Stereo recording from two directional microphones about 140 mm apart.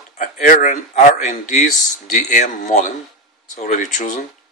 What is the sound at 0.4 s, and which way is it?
Speech, 65° left (ahead or behind).